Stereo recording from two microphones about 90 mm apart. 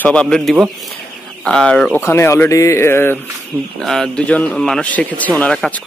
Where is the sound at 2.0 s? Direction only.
30° left (ahead or behind).